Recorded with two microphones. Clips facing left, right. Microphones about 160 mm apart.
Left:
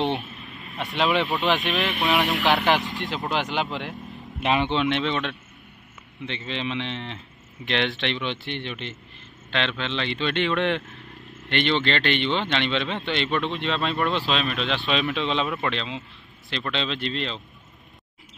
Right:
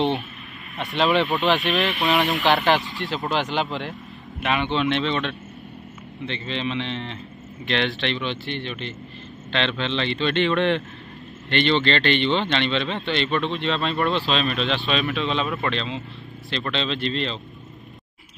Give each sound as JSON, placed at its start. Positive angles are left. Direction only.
{"t": 0.7, "sound": "speech", "side_deg": 10}
{"t": 2.6, "sound": "speech", "side_deg": 15}
{"t": 4.4, "sound": "speech", "side_deg": 30}
{"t": 4.7, "sound": "speech", "side_deg": 15}
{"t": 13.7, "sound": "speech", "side_deg": 0}
{"t": 14.9, "sound": "speech", "side_deg": 20}
{"t": 15.4, "sound": "speech", "side_deg": 0}
{"t": 15.7, "sound": "speech", "side_deg": 15}